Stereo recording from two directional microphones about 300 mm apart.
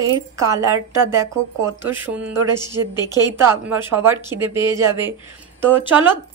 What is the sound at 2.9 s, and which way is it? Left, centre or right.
Speech, centre.